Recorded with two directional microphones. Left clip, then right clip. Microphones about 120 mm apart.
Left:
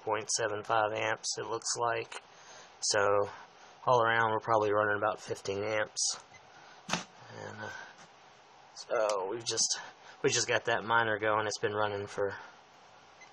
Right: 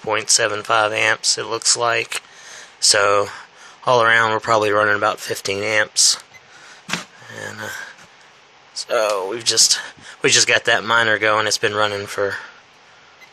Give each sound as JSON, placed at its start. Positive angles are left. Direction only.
{"t": 0.0, "sound": "speech", "side_deg": -15}
{"t": 7.3, "sound": "speech", "side_deg": -20}
{"t": 8.7, "sound": "speech", "side_deg": -20}